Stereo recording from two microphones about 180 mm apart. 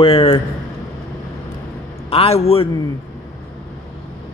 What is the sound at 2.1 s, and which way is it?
Speech, 35° left (ahead or behind).